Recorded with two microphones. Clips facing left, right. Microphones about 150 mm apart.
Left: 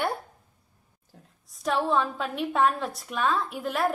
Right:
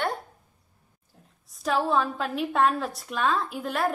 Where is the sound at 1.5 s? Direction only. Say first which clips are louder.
Right 1 dB; centre (ahead or behind).